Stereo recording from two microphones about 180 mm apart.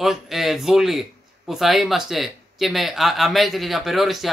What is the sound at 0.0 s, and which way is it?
Speech, centre (ahead or behind).